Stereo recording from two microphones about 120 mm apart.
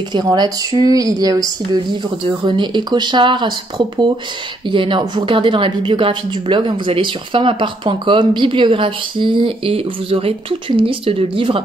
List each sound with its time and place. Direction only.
0.1 s speech: 35° right (ahead or behind)
2.4 s speech: 40° right (ahead or behind)